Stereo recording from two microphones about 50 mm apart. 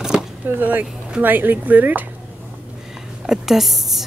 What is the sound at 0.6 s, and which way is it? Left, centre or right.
Speech, right.